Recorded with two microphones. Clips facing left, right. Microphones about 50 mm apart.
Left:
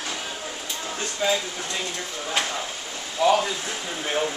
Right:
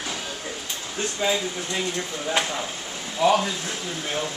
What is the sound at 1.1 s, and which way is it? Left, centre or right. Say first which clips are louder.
Speech: even; centre.